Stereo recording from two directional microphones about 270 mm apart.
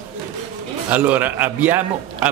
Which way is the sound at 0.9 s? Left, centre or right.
Centre.